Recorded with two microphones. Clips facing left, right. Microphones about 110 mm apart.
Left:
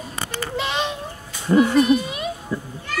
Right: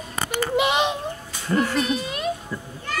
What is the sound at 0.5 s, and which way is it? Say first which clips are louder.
Bird: right 4 dB; 15° right (ahead or behind).